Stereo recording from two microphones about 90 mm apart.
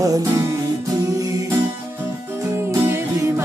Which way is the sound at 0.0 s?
40° right (ahead or behind).